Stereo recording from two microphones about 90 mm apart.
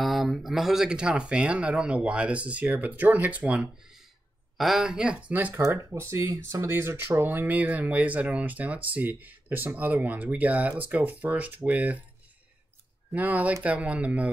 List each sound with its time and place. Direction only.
0.0 s speech: centre (ahead or behind); by 5.6 s 20° right (ahead or behind)
5.9 s speech: 30° right (ahead or behind)
13.1 s speech: 15° right (ahead or behind)